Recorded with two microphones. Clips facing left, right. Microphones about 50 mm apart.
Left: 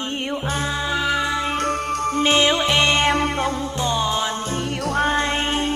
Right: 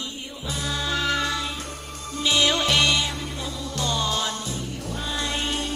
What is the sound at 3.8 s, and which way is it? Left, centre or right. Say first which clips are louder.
Music: left 3 dB; left.